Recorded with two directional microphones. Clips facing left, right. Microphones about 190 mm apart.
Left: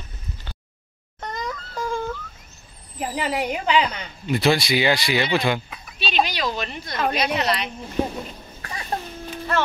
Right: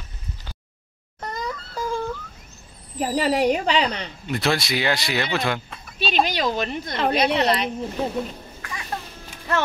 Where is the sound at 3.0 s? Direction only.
35° right (ahead or behind).